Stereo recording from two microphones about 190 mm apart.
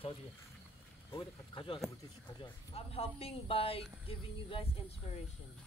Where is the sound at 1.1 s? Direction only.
25° left (ahead or behind).